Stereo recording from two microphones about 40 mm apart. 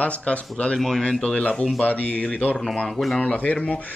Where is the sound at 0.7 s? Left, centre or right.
Centre.